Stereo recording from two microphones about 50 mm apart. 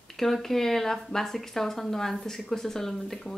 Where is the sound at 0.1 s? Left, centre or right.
Centre.